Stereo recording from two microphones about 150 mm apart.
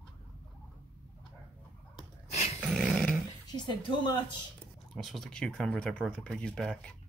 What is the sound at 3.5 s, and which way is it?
Speech, 30° left (ahead or behind).